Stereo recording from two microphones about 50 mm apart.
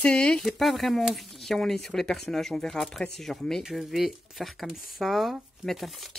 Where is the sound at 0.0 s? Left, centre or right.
Left.